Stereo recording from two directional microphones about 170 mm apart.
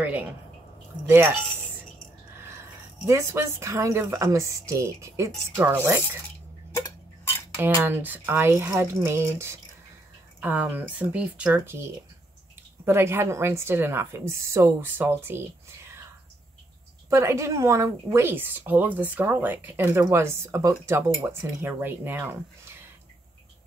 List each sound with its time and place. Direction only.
1.0 s speech: 10° right (ahead or behind)
3.1 s speech: 15° right (ahead or behind)
7.8 s speech: 10° right (ahead or behind)
12.8 s speech: 15° right (ahead or behind)
17.1 s speech: 15° right (ahead or behind)